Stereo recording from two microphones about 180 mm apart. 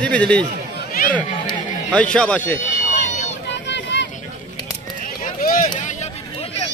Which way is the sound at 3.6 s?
75° left (ahead or behind).